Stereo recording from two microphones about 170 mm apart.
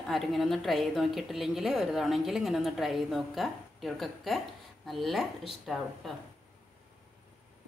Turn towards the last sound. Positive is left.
turn(degrees=0)  # may be behind; listen again after turning